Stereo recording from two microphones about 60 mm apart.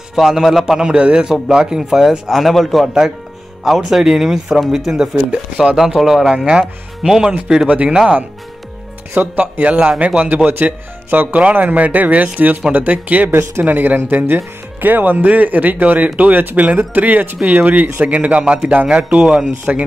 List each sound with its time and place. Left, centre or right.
0.1 s a man's voice: centre
0.8 s a man's voice: centre
5.3 s speech: right
5.8 s a man's voice: centre
6.3 s speech: centre
7.0 s speech: centre
9.1 s speech: right